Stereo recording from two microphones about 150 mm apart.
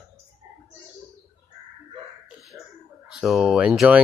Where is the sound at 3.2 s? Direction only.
5° right (ahead or behind).